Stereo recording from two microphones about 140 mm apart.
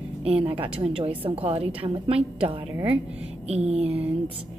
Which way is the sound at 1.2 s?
45° right (ahead or behind).